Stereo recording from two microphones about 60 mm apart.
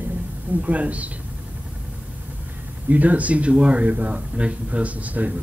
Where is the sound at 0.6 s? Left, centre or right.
Right.